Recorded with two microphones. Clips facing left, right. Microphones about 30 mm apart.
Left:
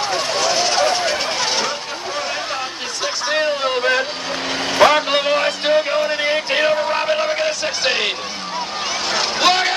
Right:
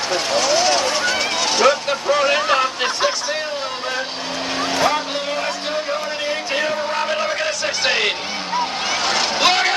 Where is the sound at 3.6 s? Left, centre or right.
Left.